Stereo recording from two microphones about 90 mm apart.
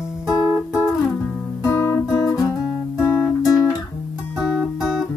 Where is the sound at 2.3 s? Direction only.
35° left (ahead or behind).